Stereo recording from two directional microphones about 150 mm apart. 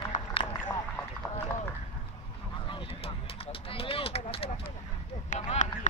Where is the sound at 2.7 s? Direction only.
35° left (ahead or behind).